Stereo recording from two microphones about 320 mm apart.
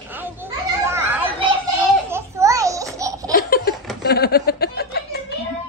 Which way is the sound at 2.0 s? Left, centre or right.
Centre.